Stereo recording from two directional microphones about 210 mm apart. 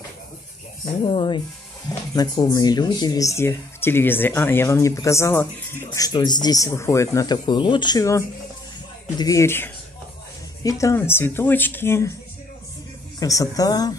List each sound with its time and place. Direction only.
1.0 s speech: 25° left (ahead or behind)
9.2 s speech: 15° left (ahead or behind)
13.2 s speech: 15° left (ahead or behind)